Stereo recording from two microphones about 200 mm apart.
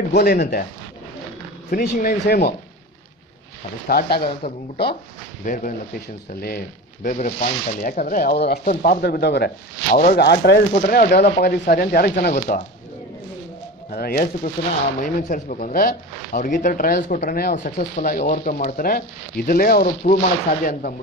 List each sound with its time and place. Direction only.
0.1 s speech: 55° left (ahead or behind)
1.7 s speech: 45° left (ahead or behind)
3.8 s speech: 50° left (ahead or behind)
5.4 s speech: 40° left (ahead or behind)
13.8 s speech: 50° left (ahead or behind)